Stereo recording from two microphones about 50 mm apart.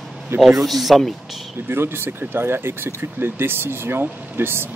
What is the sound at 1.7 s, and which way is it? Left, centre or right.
Speech, right.